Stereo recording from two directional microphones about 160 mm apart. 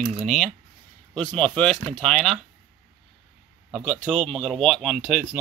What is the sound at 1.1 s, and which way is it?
Speech, 5° left (ahead or behind).